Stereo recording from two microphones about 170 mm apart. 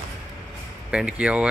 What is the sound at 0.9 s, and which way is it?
Speech, 5° right (ahead or behind).